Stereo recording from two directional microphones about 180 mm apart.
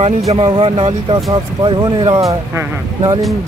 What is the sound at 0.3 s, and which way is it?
Speech, 30° right (ahead or behind).